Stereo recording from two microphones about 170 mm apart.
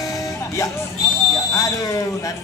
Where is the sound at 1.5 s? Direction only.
20° left (ahead or behind).